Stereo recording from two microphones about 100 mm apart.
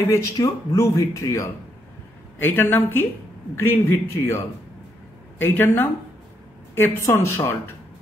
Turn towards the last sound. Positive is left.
turn(degrees=25)  # may be behind; listen again after turning